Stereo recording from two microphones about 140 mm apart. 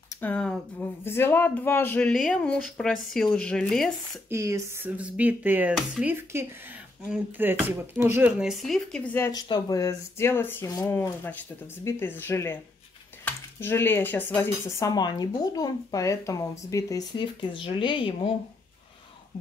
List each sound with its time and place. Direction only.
0.2 s speech: 10° left (ahead or behind)
4.3 s speech: 20° right (ahead or behind); by 9.1 s 5° left (ahead or behind)
9.1 s speech: 20° left (ahead or behind)
14.9 s speech: 30° left (ahead or behind)